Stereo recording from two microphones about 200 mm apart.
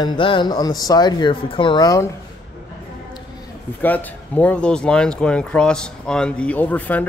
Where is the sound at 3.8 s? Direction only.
10° left (ahead or behind).